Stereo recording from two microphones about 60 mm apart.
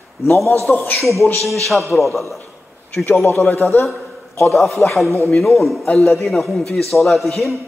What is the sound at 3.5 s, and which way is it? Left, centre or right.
Speech, left.